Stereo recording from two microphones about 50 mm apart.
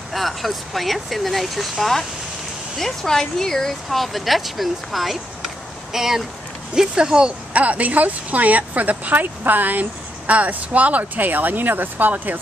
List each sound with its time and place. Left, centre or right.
0.1 s speech: centre
7.5 s speech: right